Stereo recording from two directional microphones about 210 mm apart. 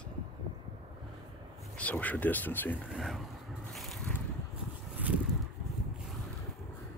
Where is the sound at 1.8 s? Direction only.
5° left (ahead or behind).